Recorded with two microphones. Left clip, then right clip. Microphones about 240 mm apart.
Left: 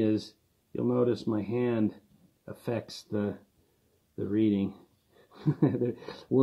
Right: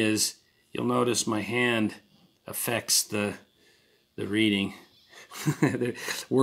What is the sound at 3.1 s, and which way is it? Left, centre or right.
Speech, centre.